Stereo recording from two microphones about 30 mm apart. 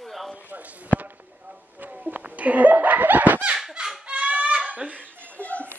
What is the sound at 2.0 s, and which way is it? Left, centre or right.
Laughter, right.